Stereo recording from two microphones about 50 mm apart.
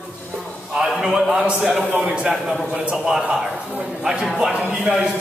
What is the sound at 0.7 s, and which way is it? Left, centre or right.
A man's voice, centre.